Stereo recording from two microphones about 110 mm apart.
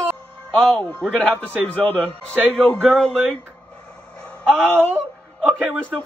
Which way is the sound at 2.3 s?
20° right (ahead or behind).